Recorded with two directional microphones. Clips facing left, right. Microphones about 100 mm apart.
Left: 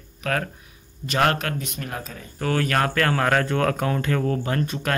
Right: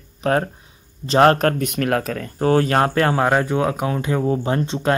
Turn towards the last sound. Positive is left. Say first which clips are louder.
# right 5 dB
turn(degrees=-25)  # may be behind; listen again after turning